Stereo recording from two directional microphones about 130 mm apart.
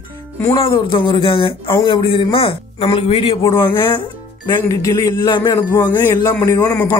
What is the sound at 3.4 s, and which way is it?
Speech, 20° left (ahead or behind).